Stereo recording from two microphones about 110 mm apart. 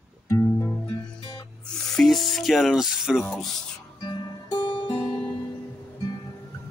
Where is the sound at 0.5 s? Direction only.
20° left (ahead or behind).